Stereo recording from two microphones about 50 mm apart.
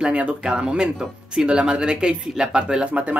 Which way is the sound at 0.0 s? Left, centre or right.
Right.